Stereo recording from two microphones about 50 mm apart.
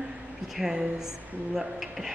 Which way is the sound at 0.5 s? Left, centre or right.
Centre.